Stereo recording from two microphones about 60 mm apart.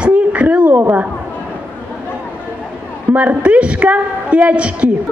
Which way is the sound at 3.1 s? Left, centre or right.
Right.